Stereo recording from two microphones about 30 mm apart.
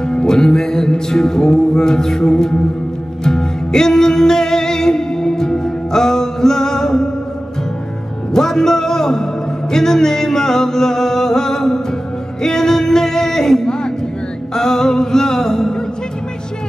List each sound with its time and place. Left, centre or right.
0.0 s music: left
8.3 s music: centre
12.4 s a sound: centre